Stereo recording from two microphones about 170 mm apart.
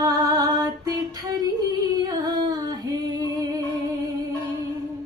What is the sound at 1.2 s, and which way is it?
Female singing, 20° right (ahead or behind).